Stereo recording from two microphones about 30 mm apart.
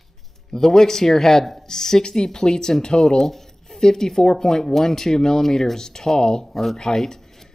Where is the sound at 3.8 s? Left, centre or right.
Centre.